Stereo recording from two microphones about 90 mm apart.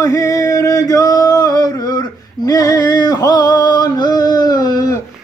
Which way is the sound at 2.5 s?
45° left (ahead or behind).